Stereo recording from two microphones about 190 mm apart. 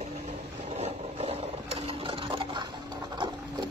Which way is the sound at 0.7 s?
35° right (ahead or behind).